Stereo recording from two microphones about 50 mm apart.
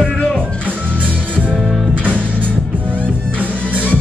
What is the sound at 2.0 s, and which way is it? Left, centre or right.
Music, right.